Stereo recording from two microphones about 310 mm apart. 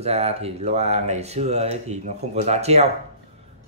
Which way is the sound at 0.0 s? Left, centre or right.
Centre.